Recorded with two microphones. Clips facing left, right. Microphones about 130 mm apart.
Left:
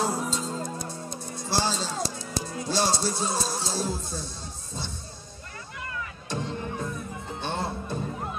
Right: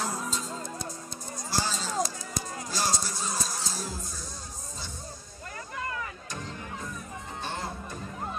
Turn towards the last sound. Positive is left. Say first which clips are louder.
# left 5 dB
turn(degrees=30)  # may be behind; listen again after turning